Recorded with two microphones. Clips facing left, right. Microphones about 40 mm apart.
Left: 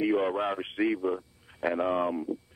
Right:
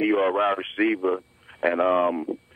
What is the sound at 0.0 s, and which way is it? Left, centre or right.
A man's voice, right.